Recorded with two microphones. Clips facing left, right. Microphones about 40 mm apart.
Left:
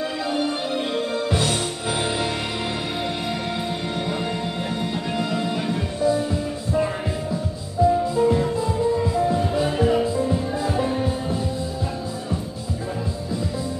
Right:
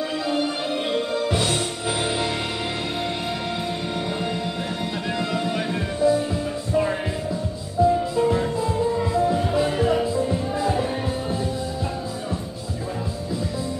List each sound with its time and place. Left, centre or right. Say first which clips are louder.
0.9 s music: right 1 dB; centre
6.0 s music: right 2 dB; right
7.8 s music: even; centre
8.2 s music: left 2 dB; right
9.0 s music: even; centre